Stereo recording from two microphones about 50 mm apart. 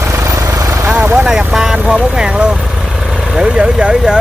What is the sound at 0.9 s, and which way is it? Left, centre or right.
Speech, right.